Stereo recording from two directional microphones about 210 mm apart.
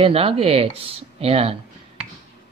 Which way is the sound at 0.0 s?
25° right (ahead or behind).